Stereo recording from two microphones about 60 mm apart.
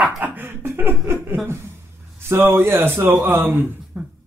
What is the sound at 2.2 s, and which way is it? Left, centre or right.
A man's voice, right.